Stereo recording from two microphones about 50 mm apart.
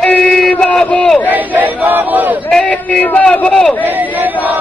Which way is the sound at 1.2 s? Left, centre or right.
Right.